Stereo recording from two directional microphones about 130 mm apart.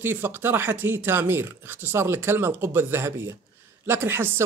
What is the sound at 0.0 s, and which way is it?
Speech, 15° right (ahead or behind).